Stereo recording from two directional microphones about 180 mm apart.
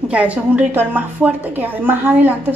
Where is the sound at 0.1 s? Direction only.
5° right (ahead or behind).